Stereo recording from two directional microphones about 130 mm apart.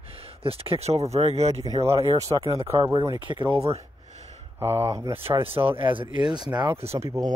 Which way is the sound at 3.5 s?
50° right (ahead or behind).